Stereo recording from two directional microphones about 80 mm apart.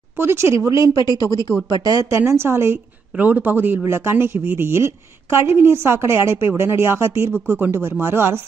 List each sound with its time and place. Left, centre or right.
0.2 s speech: right
3.2 s speech: right